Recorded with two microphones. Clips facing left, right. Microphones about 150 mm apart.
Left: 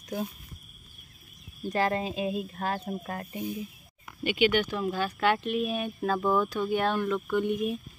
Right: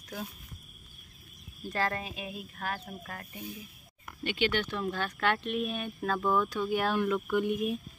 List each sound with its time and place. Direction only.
1.6 s speech: 20° left (ahead or behind)
4.2 s speech: 10° left (ahead or behind)